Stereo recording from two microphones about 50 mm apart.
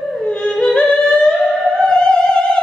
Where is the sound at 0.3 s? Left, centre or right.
Centre.